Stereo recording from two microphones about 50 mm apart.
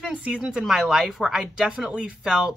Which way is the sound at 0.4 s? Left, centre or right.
Centre.